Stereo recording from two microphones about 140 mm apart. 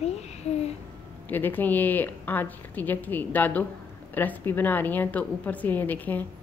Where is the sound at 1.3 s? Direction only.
15° left (ahead or behind).